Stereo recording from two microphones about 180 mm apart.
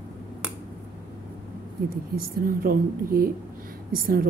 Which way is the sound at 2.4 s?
55° right (ahead or behind).